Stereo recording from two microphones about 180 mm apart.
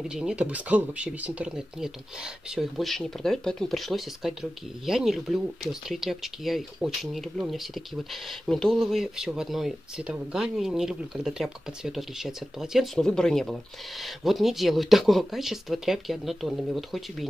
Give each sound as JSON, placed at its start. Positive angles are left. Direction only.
{"t": 0.0, "sound": "speech", "side_deg": -5}